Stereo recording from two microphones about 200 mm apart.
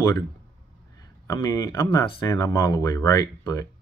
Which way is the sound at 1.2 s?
15° left (ahead or behind).